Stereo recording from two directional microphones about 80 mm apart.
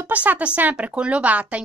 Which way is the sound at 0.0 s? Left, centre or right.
Right.